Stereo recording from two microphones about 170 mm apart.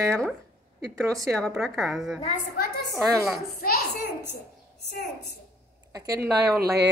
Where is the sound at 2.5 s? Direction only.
65° left (ahead or behind).